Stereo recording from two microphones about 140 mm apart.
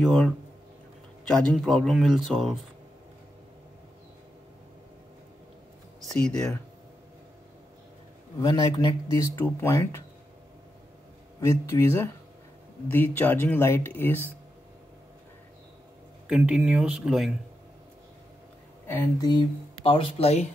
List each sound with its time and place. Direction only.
0.0 s speech: 5° left (ahead or behind)
6.1 s speech: 5° left (ahead or behind)
8.4 s speech: 30° left (ahead or behind)
11.4 s speech: 20° left (ahead or behind)
16.3 s speech: 5° right (ahead or behind)
19.2 s speech: 35° left (ahead or behind)